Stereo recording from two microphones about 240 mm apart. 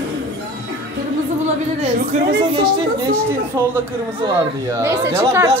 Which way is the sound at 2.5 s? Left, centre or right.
Centre.